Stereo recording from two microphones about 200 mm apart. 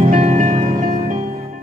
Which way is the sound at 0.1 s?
35° right (ahead or behind).